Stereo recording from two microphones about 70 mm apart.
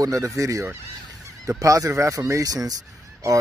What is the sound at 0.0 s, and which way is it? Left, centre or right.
Speech, right.